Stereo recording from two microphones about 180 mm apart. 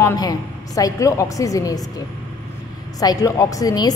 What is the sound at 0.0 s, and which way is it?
A woman's voice, 20° left (ahead or behind).